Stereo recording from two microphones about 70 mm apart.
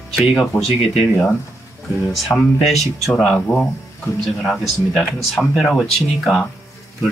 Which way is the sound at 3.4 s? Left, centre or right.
Centre.